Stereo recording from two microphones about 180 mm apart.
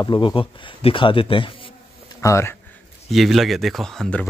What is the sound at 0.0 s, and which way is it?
Speech, 25° left (ahead or behind).